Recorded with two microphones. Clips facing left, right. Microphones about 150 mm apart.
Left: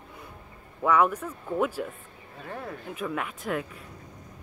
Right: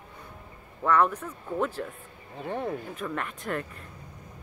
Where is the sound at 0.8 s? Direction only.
10° left (ahead or behind).